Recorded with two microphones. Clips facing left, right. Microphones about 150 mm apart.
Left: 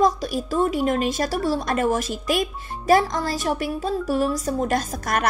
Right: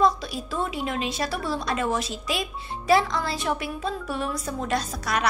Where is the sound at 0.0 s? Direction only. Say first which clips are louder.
Left 2 dB; 40° left (ahead or behind).